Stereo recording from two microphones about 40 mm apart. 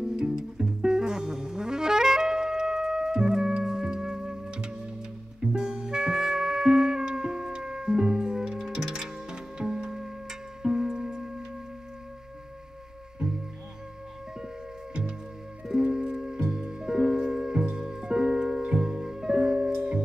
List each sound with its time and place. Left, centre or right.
0.0 s music: centre
13.2 s music: centre
15.6 s music: centre